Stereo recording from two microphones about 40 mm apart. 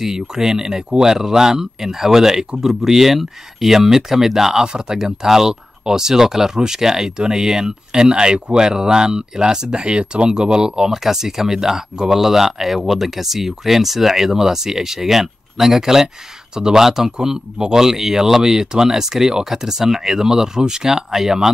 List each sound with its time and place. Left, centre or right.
0.0 s speech: centre